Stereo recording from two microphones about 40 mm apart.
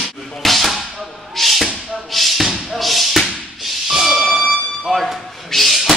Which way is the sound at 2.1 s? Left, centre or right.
Centre.